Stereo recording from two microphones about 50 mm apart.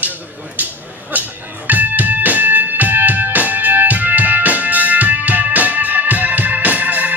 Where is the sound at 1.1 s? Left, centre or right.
Right.